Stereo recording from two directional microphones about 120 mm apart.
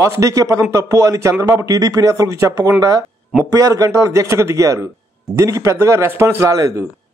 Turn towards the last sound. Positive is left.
turn(degrees=-25)  # may be behind; listen again after turning